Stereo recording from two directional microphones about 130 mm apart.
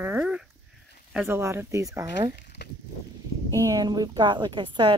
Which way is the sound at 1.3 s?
20° right (ahead or behind).